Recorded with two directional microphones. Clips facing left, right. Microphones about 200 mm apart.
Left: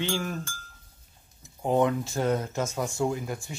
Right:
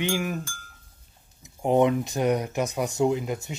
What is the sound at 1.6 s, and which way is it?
Speech, 20° right (ahead or behind).